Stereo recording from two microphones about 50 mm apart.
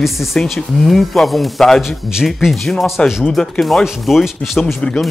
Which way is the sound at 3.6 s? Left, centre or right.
Centre.